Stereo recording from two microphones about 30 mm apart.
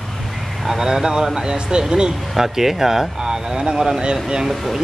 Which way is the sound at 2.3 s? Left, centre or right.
Centre.